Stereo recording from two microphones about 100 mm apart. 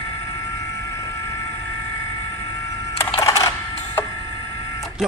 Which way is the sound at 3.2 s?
30° left (ahead or behind).